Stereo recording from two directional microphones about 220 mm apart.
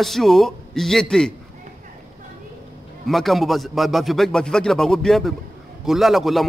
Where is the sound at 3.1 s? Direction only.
Centre (ahead or behind).